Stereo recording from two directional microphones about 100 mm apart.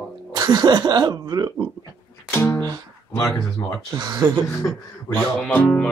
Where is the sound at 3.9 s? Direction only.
35° right (ahead or behind).